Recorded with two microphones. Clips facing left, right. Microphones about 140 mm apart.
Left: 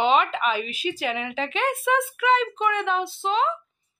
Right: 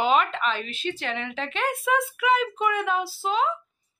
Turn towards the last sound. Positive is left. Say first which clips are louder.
# left 1 dB
turn(degrees=-5)  # may be behind; listen again after turning